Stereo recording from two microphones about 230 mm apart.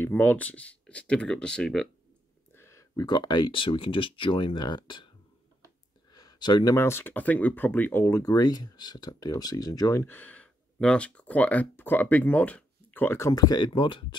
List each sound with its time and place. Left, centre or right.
0.0 s speech: centre
6.1 s speech: centre